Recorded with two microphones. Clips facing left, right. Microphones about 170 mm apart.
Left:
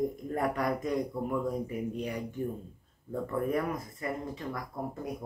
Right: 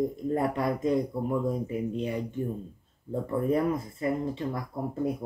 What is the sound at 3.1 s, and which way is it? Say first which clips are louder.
Speech: right 4 dB; 25° right (ahead or behind).